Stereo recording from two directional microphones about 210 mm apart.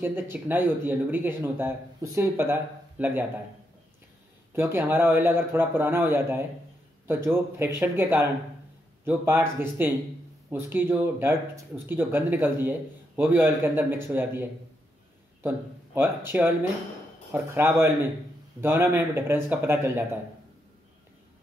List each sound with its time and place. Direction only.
0.0 s speech: 10° right (ahead or behind)
4.6 s speech: 10° right (ahead or behind)